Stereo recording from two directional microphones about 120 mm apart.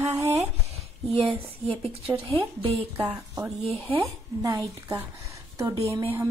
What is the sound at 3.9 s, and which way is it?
Speech, 30° right (ahead or behind).